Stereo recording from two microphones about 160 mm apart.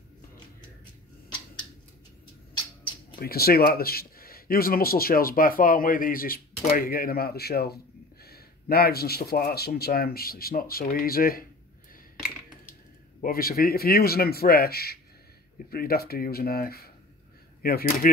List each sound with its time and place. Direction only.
3.2 s speech: 70° left (ahead or behind)
13.2 s speech: 65° left (ahead or behind)